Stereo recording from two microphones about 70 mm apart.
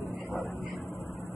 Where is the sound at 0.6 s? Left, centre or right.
Centre.